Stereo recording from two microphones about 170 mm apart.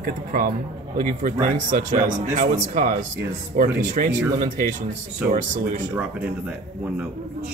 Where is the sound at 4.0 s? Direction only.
50° right (ahead or behind).